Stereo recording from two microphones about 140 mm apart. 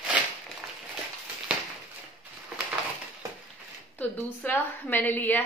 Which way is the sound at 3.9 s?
15° left (ahead or behind).